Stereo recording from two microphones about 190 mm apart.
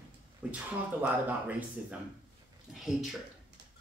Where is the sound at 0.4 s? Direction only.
5° right (ahead or behind).